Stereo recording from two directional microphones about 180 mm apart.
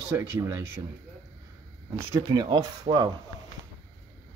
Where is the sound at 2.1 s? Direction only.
20° right (ahead or behind).